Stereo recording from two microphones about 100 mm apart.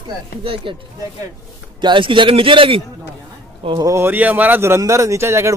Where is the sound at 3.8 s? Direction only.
30° right (ahead or behind).